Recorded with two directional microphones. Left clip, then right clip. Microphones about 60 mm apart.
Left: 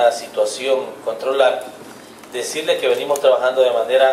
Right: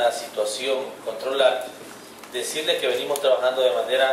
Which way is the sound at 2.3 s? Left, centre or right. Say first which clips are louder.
Left 4 dB; left.